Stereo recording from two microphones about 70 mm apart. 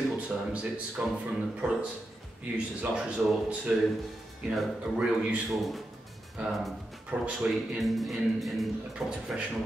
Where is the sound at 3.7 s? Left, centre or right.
Centre.